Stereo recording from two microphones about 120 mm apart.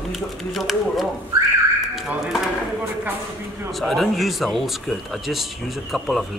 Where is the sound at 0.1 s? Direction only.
Centre (ahead or behind).